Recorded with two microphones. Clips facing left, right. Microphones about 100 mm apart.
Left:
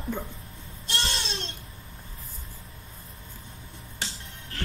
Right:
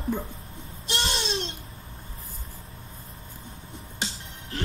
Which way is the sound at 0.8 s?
20° right (ahead or behind).